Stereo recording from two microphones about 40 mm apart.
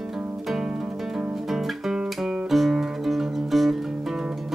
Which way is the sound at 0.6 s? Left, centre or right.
Centre.